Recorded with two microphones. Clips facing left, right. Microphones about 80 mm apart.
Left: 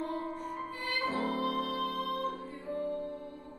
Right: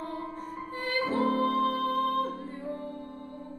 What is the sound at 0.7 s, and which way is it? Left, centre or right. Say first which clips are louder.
Music: right 6 dB; right.